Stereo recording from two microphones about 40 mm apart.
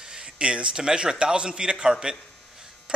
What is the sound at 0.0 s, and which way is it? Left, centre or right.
Speech, centre.